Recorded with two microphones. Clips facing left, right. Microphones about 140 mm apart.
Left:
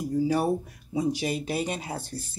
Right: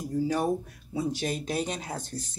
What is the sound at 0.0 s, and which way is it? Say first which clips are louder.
A woman's voice: left 3 dB; 10° left (ahead or behind).